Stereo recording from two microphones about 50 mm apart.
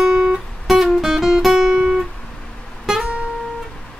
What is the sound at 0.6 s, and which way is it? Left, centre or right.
Guitar, centre.